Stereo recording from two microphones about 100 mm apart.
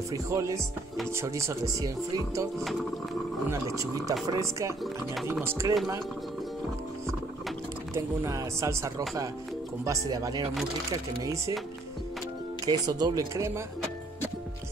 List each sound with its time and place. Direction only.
0.1 s speech: 30° right (ahead or behind)
3.4 s speech: 30° right (ahead or behind)
7.9 s speech: 30° right (ahead or behind)
12.6 s speech: 40° right (ahead or behind)